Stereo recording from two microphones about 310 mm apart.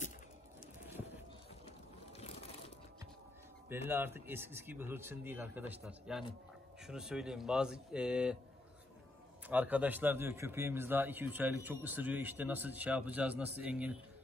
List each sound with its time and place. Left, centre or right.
2.1 s crushing: centre
3.6 s a man's voice: centre
9.5 s a man's voice: centre